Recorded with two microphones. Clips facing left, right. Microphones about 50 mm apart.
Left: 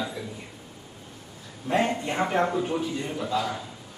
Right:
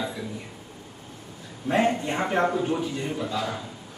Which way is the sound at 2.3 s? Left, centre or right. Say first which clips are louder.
Right 3 dB; centre.